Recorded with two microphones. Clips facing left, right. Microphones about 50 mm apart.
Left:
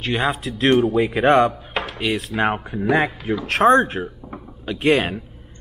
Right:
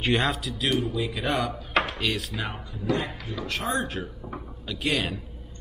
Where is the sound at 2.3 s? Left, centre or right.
Left.